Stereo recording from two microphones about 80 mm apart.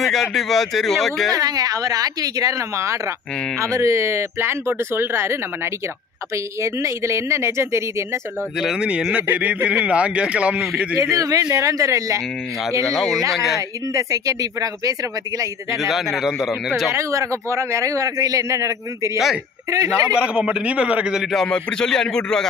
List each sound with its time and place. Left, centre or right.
0.0 s speech: centre
1.3 s a man's voice: right
8.5 s speech: centre
11.0 s a man's voice: right
12.8 s speech: centre
13.9 s a man's voice: right
15.7 s speech: centre
16.9 s a man's voice: right
20.2 s speech: centre
21.3 s speech: centre